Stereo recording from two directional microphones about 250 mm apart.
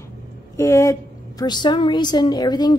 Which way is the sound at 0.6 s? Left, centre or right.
Centre.